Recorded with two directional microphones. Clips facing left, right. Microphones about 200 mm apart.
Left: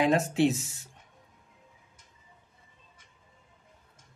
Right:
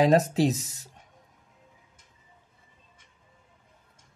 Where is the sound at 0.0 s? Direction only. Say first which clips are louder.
Right 3 dB; 35° right (ahead or behind).